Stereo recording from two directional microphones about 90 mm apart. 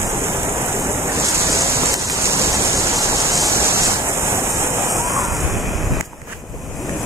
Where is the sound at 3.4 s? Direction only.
35° right (ahead or behind).